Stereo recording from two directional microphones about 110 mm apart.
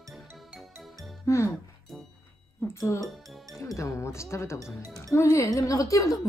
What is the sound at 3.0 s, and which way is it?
Speech, centre (ahead or behind).